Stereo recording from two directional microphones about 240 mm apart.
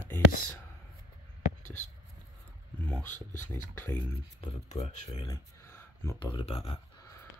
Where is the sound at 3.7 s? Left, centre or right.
Centre.